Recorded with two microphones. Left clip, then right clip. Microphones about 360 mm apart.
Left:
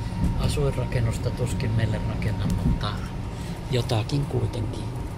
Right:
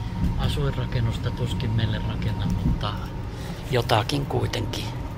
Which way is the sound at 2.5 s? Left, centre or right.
Centre.